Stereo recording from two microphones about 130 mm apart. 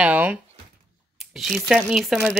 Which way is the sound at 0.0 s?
10° right (ahead or behind).